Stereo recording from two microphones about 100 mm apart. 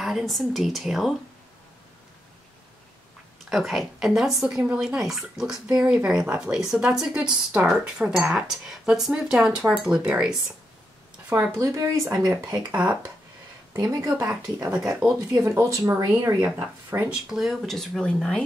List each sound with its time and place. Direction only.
0.0 s a woman's voice: centre (ahead or behind)
3.4 s a woman's voice: centre (ahead or behind)
11.5 s speech: 30° right (ahead or behind)
12.4 s speech: 10° right (ahead or behind)
13.8 s speech: 30° right (ahead or behind)
17.1 s a woman's voice: 5° right (ahead or behind)